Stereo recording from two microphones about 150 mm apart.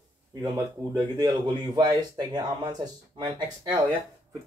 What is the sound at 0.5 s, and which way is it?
Speech, 30° right (ahead or behind).